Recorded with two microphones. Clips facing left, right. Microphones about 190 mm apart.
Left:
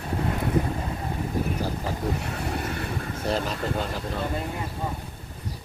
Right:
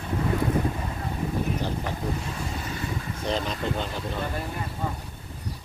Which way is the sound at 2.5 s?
60° left (ahead or behind).